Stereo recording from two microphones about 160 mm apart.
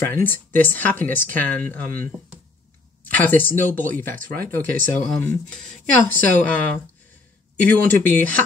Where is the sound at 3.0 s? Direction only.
10° left (ahead or behind).